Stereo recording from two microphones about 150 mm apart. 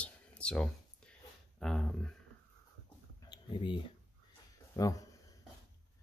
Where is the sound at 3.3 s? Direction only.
25° left (ahead or behind).